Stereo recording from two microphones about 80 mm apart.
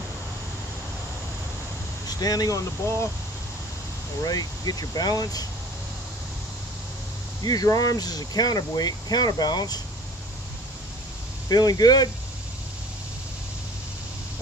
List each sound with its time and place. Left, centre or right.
2.0 s speech: left
4.2 s speech: left
7.4 s speech: left
11.4 s speech: left